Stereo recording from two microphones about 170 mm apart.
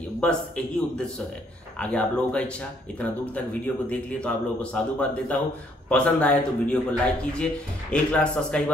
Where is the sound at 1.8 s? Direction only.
5° left (ahead or behind).